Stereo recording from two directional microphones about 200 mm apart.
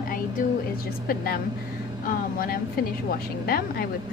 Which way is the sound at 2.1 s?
45° left (ahead or behind).